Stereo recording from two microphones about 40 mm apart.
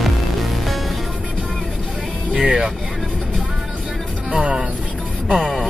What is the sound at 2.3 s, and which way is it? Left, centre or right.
Speech, centre.